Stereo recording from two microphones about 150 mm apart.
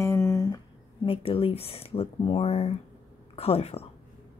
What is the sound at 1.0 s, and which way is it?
Speech, 40° left (ahead or behind).